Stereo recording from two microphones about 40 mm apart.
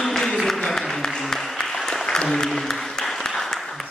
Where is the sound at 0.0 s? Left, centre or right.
Centre.